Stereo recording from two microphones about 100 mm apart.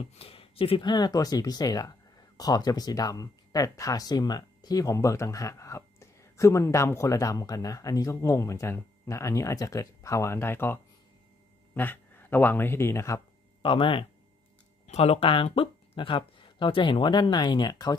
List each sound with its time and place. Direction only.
0.0 s speech: 70° left (ahead or behind)
0.8 s speech: 45° left (ahead or behind)
13.6 s speech: 60° left (ahead or behind)
14.9 s speech: 90° left; by 17.9 s 45° left (ahead or behind)